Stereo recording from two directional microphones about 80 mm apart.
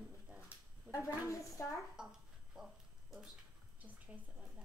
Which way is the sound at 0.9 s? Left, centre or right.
Left.